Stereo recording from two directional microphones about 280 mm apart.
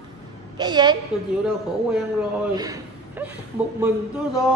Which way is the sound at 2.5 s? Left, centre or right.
Centre.